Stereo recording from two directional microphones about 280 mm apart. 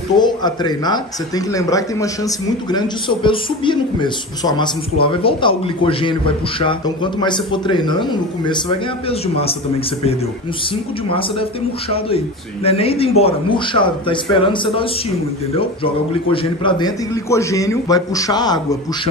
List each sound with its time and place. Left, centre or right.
0.2 s speech: centre
11.1 s a man's voice: centre
12.6 s a man's voice: left